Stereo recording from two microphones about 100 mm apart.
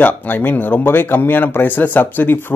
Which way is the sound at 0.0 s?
20° left (ahead or behind).